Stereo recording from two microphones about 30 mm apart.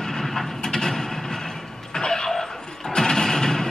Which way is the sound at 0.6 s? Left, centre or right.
Centre.